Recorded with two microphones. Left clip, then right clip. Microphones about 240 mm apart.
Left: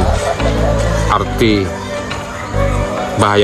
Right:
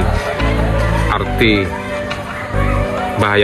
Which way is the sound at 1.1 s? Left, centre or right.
Left.